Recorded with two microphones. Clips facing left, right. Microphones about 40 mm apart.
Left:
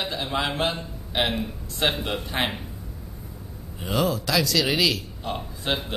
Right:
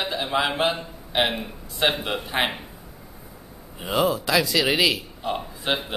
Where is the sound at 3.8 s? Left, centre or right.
Centre.